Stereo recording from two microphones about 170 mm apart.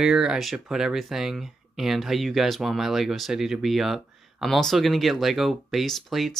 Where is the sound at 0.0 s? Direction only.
5° right (ahead or behind).